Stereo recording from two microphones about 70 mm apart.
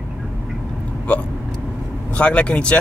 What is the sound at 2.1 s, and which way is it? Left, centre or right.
Speech, centre.